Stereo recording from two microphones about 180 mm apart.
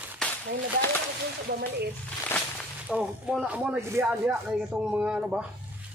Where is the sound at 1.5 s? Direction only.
65° right (ahead or behind).